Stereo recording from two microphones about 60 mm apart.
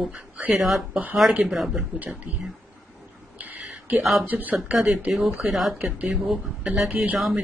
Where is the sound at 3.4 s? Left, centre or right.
Right.